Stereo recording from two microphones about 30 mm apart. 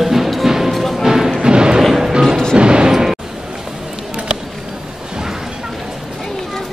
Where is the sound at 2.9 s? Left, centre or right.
Centre.